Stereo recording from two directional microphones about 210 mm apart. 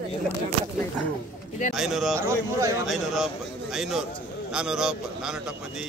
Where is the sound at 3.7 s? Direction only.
Centre (ahead or behind).